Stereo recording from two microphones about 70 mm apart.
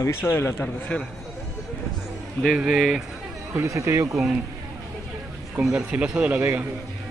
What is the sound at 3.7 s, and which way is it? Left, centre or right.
Speech, right.